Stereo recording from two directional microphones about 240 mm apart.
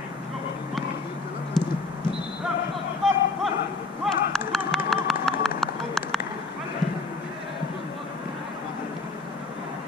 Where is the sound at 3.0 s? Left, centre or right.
Centre.